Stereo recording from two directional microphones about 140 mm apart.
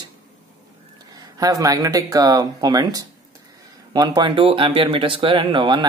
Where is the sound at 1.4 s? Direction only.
25° right (ahead or behind).